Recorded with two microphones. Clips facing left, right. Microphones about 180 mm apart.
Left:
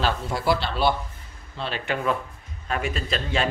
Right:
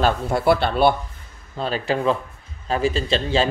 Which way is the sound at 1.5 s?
40° right (ahead or behind).